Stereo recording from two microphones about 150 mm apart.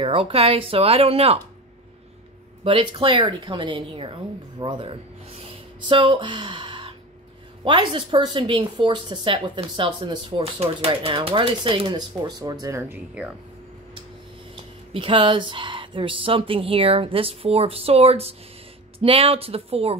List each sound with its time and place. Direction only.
0.0 s a woman's voice: 40° right (ahead or behind)
2.6 s a woman's voice: 35° right (ahead or behind); by 13.3 s 10° right (ahead or behind)
14.5 s a woman's voice: 35° right (ahead or behind)